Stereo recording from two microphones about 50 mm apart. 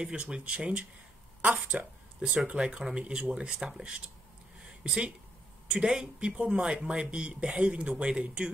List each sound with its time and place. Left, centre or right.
0.0 s speech: centre